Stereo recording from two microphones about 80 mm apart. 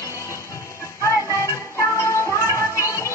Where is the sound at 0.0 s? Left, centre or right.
Left.